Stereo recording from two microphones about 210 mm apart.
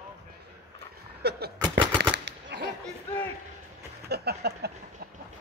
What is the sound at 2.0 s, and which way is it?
Machine gun, 55° right (ahead or behind).